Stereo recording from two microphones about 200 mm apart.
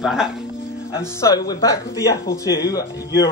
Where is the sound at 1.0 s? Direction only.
15° left (ahead or behind).